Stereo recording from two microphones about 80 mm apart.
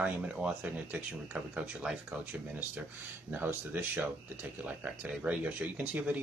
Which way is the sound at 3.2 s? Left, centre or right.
Right.